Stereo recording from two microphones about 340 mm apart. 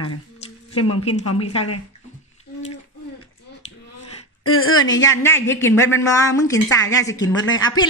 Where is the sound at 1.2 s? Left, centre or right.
Left.